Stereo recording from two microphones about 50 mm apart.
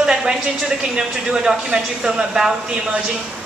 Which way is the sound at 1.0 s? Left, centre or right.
Centre.